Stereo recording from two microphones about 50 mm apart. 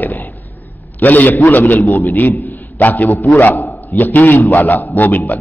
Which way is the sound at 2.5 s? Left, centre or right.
Left.